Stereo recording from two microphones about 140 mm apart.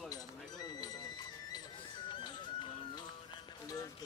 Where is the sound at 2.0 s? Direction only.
35° left (ahead or behind).